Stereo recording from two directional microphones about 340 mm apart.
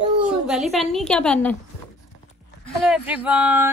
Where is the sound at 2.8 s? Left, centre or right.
Centre.